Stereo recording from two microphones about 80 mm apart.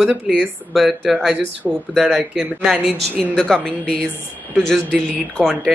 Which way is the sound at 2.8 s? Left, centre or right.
Centre.